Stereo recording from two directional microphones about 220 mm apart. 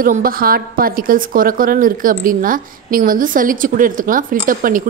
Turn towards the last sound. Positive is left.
turn(degrees=-40)  # may be behind; listen again after turning